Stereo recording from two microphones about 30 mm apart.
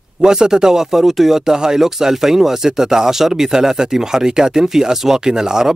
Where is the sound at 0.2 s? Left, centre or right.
Right.